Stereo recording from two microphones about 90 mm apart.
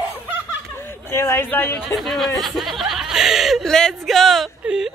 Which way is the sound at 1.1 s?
30° left (ahead or behind).